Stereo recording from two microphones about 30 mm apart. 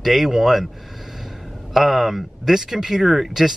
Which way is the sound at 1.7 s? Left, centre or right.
Centre.